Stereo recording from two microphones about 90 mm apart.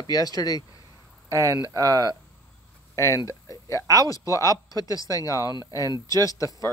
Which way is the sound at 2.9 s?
35° left (ahead or behind).